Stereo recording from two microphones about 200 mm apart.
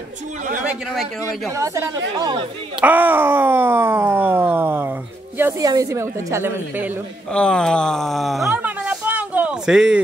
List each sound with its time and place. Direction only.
1.5 s speech: 15° right (ahead or behind)
2.8 s speech: 10° right (ahead or behind)
7.3 s speech: 5° left (ahead or behind)